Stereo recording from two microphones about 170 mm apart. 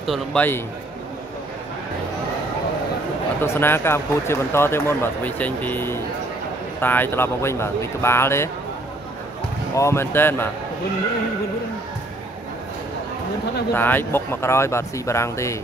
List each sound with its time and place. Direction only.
0.0 s a man's voice: centre (ahead or behind)
3.3 s speech: 15° left (ahead or behind)
9.8 s speech: 15° left (ahead or behind)
13.7 s speech: 10° left (ahead or behind)